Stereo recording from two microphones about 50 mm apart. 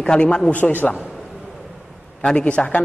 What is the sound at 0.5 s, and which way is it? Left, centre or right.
Speech, left.